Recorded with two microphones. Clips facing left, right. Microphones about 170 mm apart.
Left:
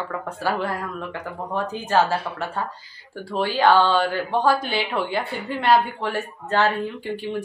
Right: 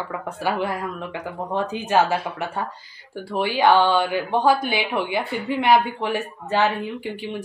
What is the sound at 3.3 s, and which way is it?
A woman's voice, 15° right (ahead or behind).